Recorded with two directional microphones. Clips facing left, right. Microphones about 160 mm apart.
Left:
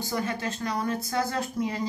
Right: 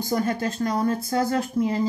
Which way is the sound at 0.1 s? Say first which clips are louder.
Right 6 dB; 45° right (ahead or behind).